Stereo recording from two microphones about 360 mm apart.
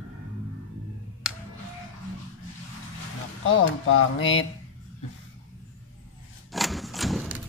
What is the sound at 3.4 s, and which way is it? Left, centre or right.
Speech, left.